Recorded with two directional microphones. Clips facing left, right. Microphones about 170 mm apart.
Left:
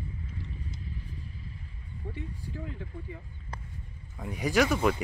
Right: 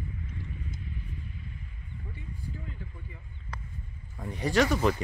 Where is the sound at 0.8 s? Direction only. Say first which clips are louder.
Right 1 dB; 35° left (ahead or behind).